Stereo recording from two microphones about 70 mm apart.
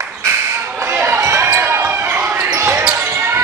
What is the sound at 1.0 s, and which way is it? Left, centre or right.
Basketball bounce, right.